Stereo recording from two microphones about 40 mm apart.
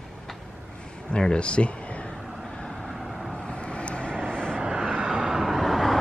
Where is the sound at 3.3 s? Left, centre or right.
Left.